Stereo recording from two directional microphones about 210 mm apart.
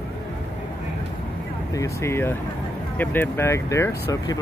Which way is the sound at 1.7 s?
15° left (ahead or behind).